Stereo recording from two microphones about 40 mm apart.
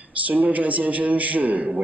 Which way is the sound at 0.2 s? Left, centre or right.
Right.